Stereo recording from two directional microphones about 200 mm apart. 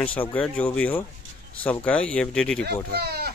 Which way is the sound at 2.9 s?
55° right (ahead or behind).